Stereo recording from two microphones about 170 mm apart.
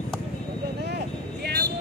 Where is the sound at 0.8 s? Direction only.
70° right (ahead or behind).